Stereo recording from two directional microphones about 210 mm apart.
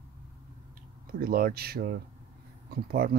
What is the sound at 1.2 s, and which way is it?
Speech, 45° right (ahead or behind).